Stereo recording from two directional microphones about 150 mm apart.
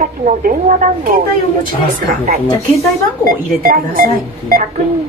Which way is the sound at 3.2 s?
70° right (ahead or behind).